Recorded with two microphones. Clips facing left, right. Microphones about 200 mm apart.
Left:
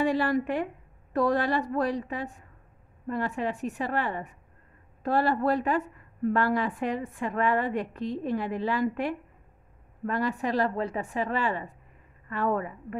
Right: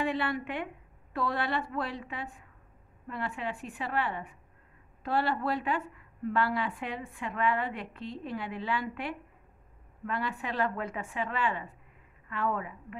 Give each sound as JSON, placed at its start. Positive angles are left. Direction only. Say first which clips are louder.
{"t": 0.0, "sound": "a woman's voice", "louder": "left 6 dB", "side_deg": 40}